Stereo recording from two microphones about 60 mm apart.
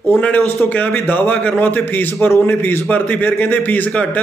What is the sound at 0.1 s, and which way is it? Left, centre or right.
A man's voice, left.